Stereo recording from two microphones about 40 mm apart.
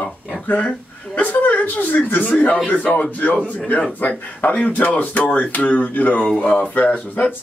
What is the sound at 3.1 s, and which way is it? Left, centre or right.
A woman's voice, left.